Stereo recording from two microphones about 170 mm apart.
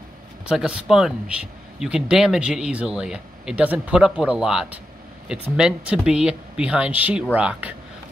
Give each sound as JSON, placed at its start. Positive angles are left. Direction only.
{"t": 0.5, "sound": "speech", "side_deg": -5}